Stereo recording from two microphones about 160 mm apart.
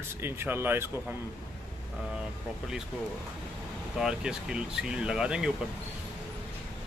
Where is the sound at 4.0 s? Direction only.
5° right (ahead or behind).